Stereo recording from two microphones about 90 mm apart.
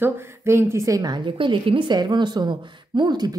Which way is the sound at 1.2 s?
70° right (ahead or behind).